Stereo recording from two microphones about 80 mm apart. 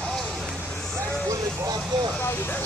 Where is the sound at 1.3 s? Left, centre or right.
Right.